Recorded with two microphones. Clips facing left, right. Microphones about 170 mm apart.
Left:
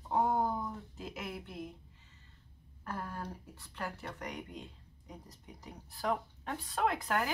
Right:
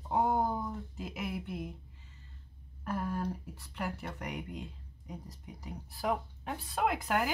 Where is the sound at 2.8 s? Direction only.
15° right (ahead or behind).